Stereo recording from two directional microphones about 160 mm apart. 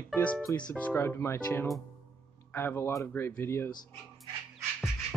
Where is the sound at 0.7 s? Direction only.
10° left (ahead or behind).